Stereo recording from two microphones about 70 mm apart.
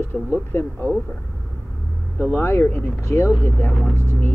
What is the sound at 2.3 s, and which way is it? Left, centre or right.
Speech, left.